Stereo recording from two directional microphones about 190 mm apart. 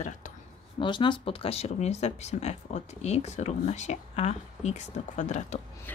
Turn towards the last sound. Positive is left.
turn(degrees=40)  # may be behind; listen again after turning